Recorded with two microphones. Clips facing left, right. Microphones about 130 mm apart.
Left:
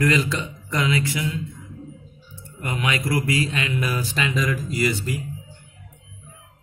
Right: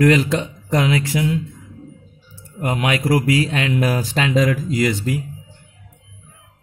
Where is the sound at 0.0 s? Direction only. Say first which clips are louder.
Right 6 dB; 75° right (ahead or behind); by 5.1 s 90° right.